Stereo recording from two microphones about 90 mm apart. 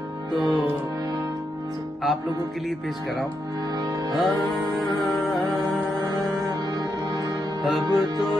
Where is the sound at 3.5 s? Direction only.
45° right (ahead or behind).